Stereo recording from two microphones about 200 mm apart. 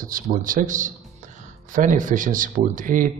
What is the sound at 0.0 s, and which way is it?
Speech, 45° right (ahead or behind).